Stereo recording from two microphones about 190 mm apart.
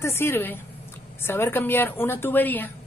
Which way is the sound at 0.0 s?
10° left (ahead or behind).